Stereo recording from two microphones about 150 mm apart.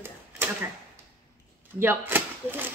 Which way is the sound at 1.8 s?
15° right (ahead or behind).